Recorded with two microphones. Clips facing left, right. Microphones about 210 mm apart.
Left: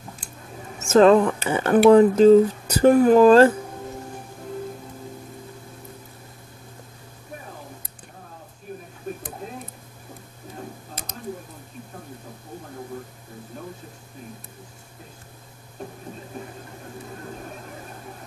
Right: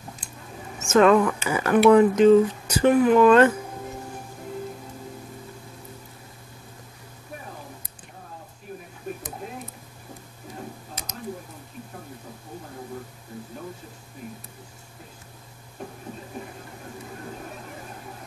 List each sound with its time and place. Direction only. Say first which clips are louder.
0.7 s speech: left 3 dB; 35° left (ahead or behind)